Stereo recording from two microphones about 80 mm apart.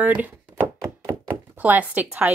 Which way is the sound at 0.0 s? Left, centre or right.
Centre.